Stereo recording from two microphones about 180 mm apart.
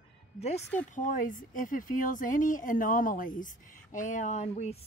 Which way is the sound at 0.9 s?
45° left (ahead or behind).